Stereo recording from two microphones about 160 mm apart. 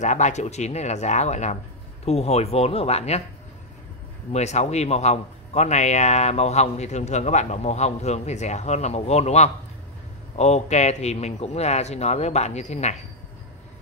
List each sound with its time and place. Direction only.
0.0 s a man's voice: 50° left (ahead or behind)
4.3 s a man's voice: 45° left (ahead or behind)